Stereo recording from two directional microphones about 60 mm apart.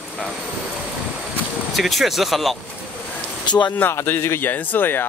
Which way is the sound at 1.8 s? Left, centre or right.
Centre.